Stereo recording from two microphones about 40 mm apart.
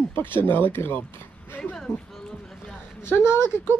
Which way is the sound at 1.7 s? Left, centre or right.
Centre.